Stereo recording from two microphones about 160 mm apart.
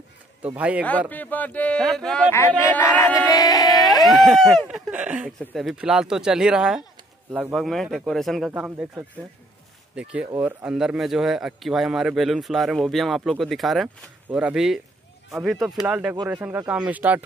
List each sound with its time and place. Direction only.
0.6 s speech: 10° right (ahead or behind)
0.8 s speech: 10° left (ahead or behind)
2.3 s speech: 15° left (ahead or behind)
4.1 s speech: centre (ahead or behind)
9.9 s speech: 10° right (ahead or behind)